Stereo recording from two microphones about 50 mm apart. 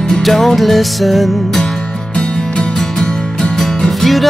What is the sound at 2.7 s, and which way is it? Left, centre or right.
Music, centre.